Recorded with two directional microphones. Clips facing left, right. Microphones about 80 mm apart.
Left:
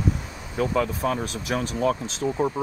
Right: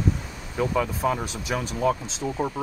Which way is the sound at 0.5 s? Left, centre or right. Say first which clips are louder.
Left 1 dB; centre.